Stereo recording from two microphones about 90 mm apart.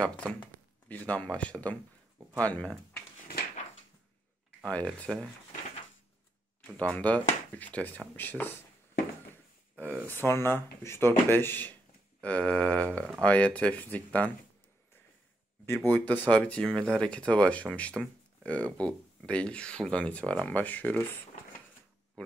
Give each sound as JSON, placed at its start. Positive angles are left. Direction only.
{"t": 0.0, "sound": "speech", "side_deg": 15}
{"t": 4.6, "sound": "speech", "side_deg": 15}
{"t": 6.8, "sound": "speech", "side_deg": 15}
{"t": 9.8, "sound": "speech", "side_deg": -30}
{"t": 10.1, "sound": "speech", "side_deg": 25}
{"t": 15.6, "sound": "speech", "side_deg": 25}